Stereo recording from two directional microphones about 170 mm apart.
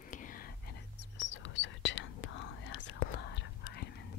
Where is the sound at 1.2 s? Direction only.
90° left.